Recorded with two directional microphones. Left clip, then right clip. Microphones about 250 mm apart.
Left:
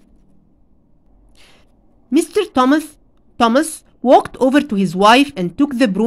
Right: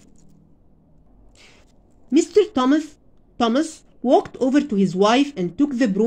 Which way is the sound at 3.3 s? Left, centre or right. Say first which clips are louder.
Left 6 dB; left.